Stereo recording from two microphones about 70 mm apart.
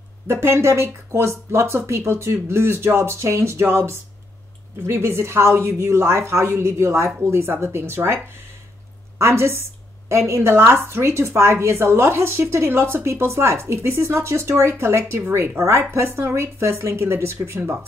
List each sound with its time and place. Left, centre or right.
0.3 s a woman's voice: right
9.2 s a woman's voice: right
15.6 s a woman's voice: right